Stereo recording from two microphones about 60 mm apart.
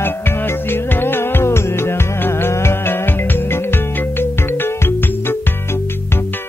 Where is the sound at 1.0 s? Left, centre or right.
Left.